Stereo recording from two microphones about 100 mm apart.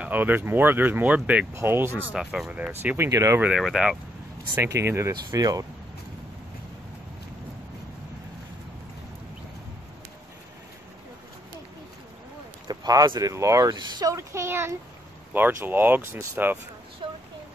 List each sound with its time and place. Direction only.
0.0 s speech: 15° right (ahead or behind)
1.5 s speech: 25° right (ahead or behind)
2.1 s speech: 5° right (ahead or behind)
2.7 s speech: 20° right (ahead or behind)
3.1 s speech: 35° right (ahead or behind)
3.3 s speech: 10° right (ahead or behind)
4.6 s speech: 25° right (ahead or behind)
5.1 s speech: 40° right (ahead or behind)
12.6 s speech: 40° right (ahead or behind)
13.3 s speech: 30° right (ahead or behind)
13.7 s speech: 45° right (ahead or behind)
14.1 s speech: 25° right (ahead or behind)
17.0 s a sound: 55° right (ahead or behind)